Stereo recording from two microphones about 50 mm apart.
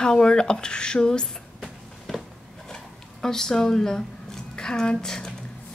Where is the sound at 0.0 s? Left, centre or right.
Centre.